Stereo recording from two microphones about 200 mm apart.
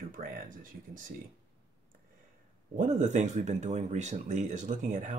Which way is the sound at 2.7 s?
40° right (ahead or behind).